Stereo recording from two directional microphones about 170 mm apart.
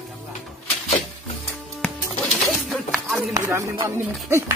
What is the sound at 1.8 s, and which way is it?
Music, centre (ahead or behind).